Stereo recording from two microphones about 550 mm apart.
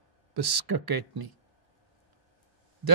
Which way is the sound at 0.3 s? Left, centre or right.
Right.